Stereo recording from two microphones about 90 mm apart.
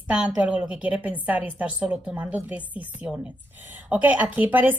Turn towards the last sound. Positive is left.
turn(degrees=-20)  # may be behind; listen again after turning